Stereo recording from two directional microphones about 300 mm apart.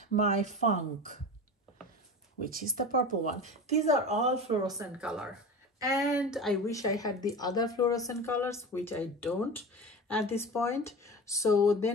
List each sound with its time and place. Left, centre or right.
0.2 s speech: right
2.4 s speech: right; by 6.8 s centre
6.8 s speech: centre